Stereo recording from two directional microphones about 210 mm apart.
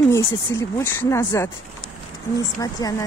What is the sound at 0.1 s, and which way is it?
Speech, 15° left (ahead or behind).